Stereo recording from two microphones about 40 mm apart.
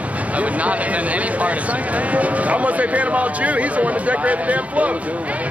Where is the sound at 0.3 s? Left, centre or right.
Right.